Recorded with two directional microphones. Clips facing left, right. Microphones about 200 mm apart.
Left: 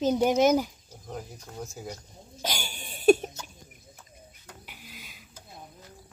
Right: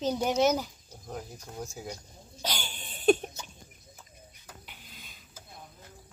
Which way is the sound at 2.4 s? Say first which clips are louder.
Left 2 dB; 10° left (ahead or behind).